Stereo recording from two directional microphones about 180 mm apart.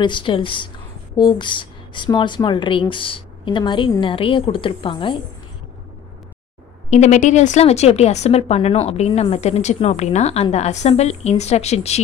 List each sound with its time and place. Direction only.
0.0 s speech: 25° left (ahead or behind)
6.9 s a woman's voice: 40° left (ahead or behind)